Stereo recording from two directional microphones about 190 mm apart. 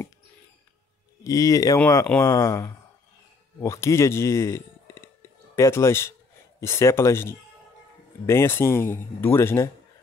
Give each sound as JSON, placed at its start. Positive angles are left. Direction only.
{"t": 1.2, "sound": "speech", "side_deg": 15}
{"t": 2.0, "sound": "speech", "side_deg": 5}
{"t": 2.3, "sound": "speech", "side_deg": 15}